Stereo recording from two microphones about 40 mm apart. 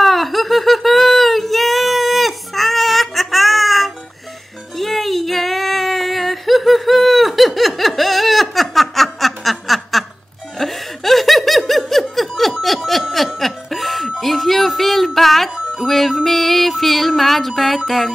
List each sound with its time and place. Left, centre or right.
0.0 s a sound: centre
10.6 s laughter: centre
12.6 s snicker: centre
13.4 s music: centre
15.5 s music: centre
15.9 s music: centre